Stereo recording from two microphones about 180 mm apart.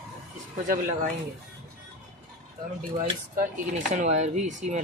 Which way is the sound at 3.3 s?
50° right (ahead or behind).